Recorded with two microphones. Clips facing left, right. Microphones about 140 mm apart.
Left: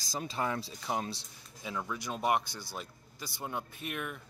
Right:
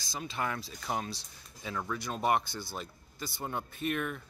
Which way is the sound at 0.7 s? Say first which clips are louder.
Even; 20° left (ahead or behind).